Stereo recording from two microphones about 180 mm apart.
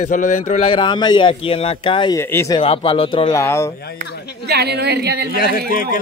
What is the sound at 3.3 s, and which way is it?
Speech, 15° left (ahead or behind).